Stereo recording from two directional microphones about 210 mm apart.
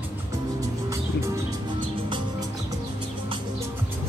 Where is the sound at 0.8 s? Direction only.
15° right (ahead or behind).